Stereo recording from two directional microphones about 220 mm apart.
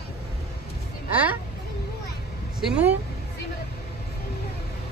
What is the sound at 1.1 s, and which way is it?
Speech, 5° right (ahead or behind).